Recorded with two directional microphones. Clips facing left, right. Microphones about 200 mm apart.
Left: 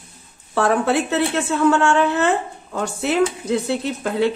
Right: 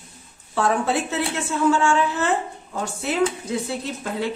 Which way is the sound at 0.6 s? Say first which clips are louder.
Left 4 dB; 65° left (ahead or behind).